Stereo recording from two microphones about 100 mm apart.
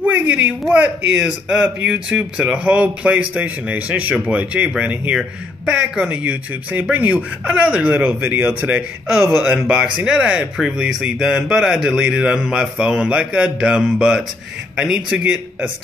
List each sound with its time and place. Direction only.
0.0 s speech: 15° right (ahead or behind)